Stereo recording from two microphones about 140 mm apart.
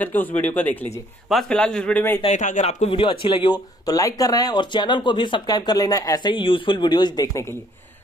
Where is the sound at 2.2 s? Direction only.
60° left (ahead or behind); by 7.4 s 30° left (ahead or behind).